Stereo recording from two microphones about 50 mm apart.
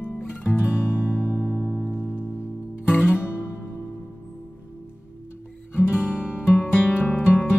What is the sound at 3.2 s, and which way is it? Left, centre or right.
Music, left.